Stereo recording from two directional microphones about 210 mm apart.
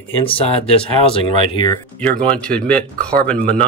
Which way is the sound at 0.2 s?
25° left (ahead or behind).